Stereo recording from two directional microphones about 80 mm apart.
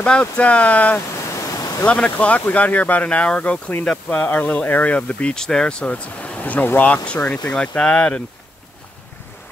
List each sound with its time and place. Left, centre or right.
0.0 s speech: centre
1.3 s waves: left
1.9 s speech: centre